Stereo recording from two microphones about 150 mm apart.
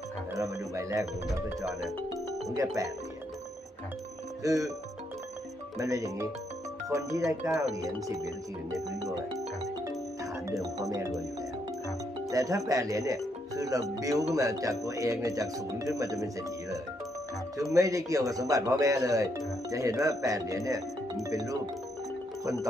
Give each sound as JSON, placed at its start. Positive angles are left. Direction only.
{"t": 0.3, "sound": "speech", "side_deg": -20}
{"t": 4.4, "sound": "speech", "side_deg": -20}
{"t": 5.8, "sound": "speech", "side_deg": -20}
{"t": 10.5, "sound": "speech", "side_deg": -20}
{"t": 12.3, "sound": "speech", "side_deg": -20}
{"t": 17.7, "sound": "speech", "side_deg": -20}